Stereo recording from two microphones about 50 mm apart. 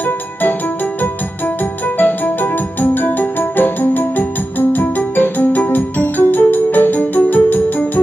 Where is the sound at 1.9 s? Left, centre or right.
Left.